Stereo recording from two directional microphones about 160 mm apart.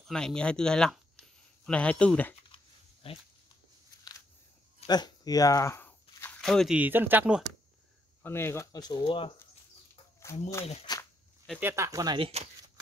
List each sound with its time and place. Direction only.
0.0 s speech: 5° left (ahead or behind)
2.5 s a sound: 35° left (ahead or behind)
4.8 s a sound: 25° left (ahead or behind); by 6.8 s centre (ahead or behind)
6.8 s speech: 10° right (ahead or behind)
8.2 s speech: 15° left (ahead or behind); by 9.3 s 30° left (ahead or behind)
10.9 s insect: 25° left (ahead or behind)
11.6 s speech: 20° right (ahead or behind)
12.2 s speech: 40° right (ahead or behind)